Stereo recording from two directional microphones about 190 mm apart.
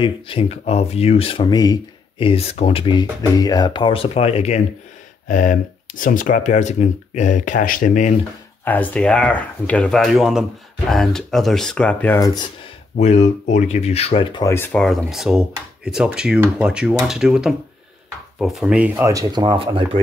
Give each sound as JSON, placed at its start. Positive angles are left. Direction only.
{"t": 0.0, "sound": "speech", "side_deg": 30}
{"t": 5.3, "sound": "speech", "side_deg": 45}
{"t": 8.6, "sound": "speech", "side_deg": 10}
{"t": 12.9, "sound": "speech", "side_deg": 35}
{"t": 14.5, "sound": "speech", "side_deg": 10}